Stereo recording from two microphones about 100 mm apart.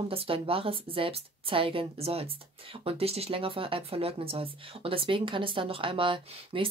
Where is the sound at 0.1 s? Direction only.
70° right (ahead or behind).